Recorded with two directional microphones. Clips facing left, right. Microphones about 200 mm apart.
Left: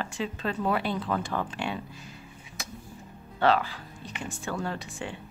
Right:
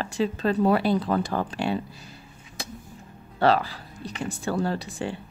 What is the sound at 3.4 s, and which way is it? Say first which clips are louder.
A woman's voice: right 3 dB; 35° right (ahead or behind).